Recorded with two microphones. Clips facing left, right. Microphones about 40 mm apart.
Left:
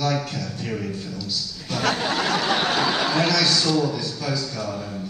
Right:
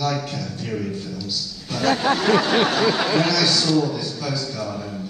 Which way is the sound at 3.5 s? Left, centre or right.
Centre.